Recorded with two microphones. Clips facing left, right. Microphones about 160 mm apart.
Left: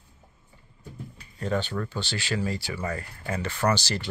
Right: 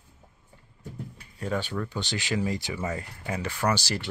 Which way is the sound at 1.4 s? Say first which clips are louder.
Left 2 dB; 10° right (ahead or behind).